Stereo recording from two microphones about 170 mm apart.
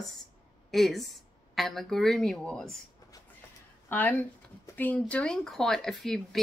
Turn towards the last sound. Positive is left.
turn(degrees=0)  # may be behind; listen again after turning